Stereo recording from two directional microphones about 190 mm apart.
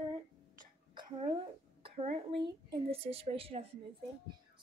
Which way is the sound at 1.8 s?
30° right (ahead or behind).